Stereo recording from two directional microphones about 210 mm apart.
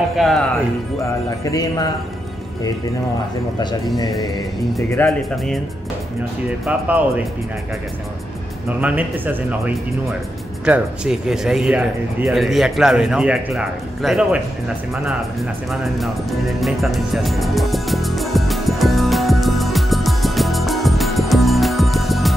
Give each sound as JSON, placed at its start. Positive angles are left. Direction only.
{"t": 0.1, "sound": "speech", "side_deg": 0}
{"t": 1.4, "sound": "a man's voice", "side_deg": 15}
{"t": 5.0, "sound": "a man's voice", "side_deg": 10}
{"t": 6.6, "sound": "speech", "side_deg": -5}
{"t": 8.6, "sound": "speech", "side_deg": -5}
{"t": 15.7, "sound": "music", "side_deg": 0}